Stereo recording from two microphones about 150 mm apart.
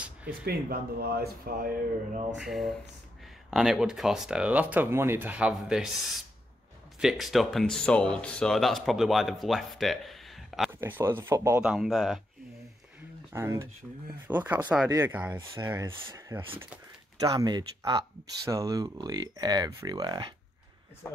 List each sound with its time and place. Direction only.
0.3 s speech: 85° right
2.3 s speech: centre (ahead or behind)
10.7 s speech: 15° right (ahead or behind)
11.6 s speech: 5° right (ahead or behind)
13.3 s speech: 15° right (ahead or behind)
15.6 s speech: 25° right (ahead or behind)